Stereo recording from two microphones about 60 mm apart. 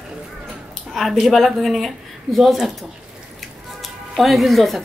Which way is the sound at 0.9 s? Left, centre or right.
Centre.